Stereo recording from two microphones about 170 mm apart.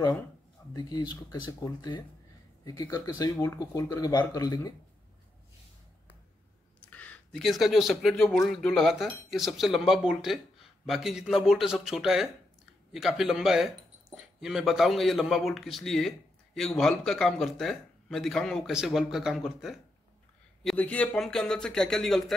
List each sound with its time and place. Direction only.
0.7 s speech: 25° left (ahead or behind)
6.9 s speech: 10° left (ahead or behind)